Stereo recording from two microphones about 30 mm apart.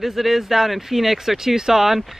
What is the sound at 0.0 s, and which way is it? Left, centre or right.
A woman's voice, centre.